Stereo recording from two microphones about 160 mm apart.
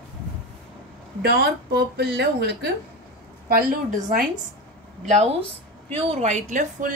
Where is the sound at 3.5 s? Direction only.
55° right (ahead or behind).